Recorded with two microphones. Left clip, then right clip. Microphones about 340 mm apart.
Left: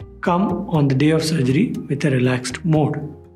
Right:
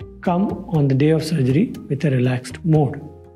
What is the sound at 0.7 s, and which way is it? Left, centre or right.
Speech, right.